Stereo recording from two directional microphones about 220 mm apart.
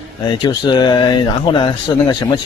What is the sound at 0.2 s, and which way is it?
Speech, 20° left (ahead or behind).